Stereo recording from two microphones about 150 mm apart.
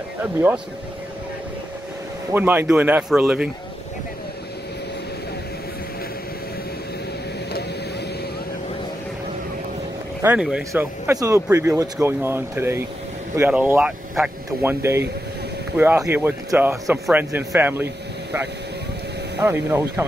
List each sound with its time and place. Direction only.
0.2 s speech: 10° right (ahead or behind)
2.3 s speech: 10° right (ahead or behind)
10.2 s speech: 5° right (ahead or behind)
10.7 s speech: 20° right (ahead or behind)
16.1 s speech: 15° right (ahead or behind)
19.4 s speech: 15° right (ahead or behind)